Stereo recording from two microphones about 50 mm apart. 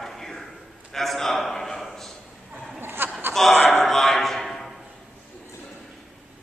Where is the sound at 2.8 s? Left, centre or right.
Right.